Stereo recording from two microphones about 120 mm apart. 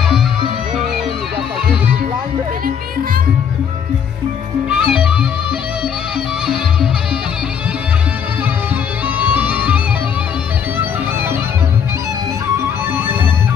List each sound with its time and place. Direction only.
4.6 s music: 5° right (ahead or behind)
6.4 s music: 5° right (ahead or behind)
9.2 s music: 15° right (ahead or behind)